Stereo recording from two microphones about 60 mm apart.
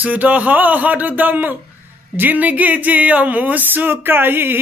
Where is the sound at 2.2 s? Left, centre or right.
Right.